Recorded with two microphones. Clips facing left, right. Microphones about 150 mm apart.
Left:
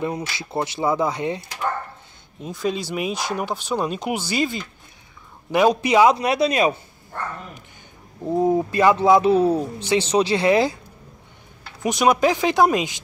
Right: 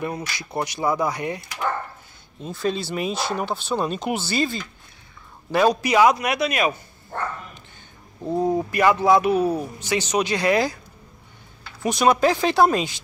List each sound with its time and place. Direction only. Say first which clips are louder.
0.0 s a man's voice: left 2 dB; 20° left (ahead or behind)
2.4 s a man's voice: even; 10° left (ahead or behind); by 6.7 s 30° left (ahead or behind)
8.2 s a man's voice: left 3 dB; 20° left (ahead or behind)
11.8 s speech: even; 15° left (ahead or behind)